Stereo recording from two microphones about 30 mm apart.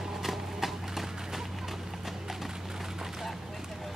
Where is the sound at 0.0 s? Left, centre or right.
Centre.